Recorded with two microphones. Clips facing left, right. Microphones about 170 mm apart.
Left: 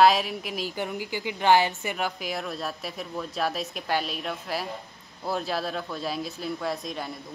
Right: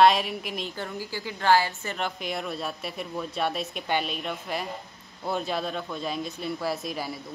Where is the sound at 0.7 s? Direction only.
15° left (ahead or behind).